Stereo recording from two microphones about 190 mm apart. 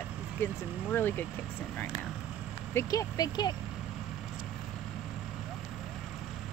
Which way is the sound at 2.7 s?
20° left (ahead or behind).